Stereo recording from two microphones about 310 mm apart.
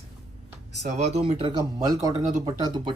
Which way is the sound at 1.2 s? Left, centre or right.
Centre.